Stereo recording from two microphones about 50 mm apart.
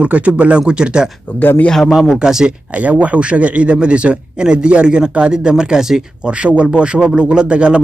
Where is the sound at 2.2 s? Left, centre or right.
Centre.